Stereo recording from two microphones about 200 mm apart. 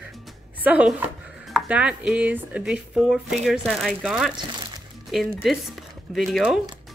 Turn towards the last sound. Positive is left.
turn(degrees=0)  # may be behind; listen again after turning